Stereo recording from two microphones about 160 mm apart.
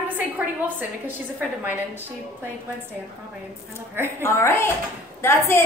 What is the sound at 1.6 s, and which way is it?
Speech, 10° right (ahead or behind).